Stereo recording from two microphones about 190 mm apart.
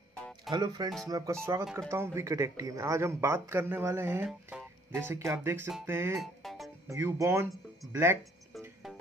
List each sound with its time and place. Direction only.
0.5 s speech: 20° right (ahead or behind)
6.1 s music: centre (ahead or behind)
6.9 s speech: 15° right (ahead or behind)